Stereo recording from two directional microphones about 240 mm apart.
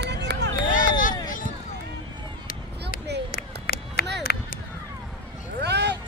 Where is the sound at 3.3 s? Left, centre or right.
Left.